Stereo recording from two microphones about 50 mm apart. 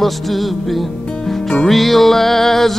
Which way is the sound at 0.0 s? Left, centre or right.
Centre.